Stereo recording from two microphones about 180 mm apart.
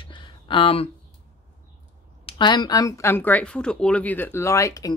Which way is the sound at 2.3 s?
25° left (ahead or behind).